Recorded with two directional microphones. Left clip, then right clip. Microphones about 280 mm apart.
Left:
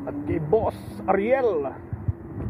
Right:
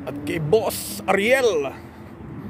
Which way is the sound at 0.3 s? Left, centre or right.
Right.